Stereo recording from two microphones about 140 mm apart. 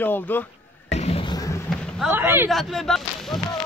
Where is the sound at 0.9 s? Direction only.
50° left (ahead or behind).